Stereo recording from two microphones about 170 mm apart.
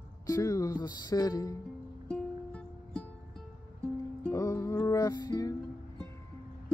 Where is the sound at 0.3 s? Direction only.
20° left (ahead or behind).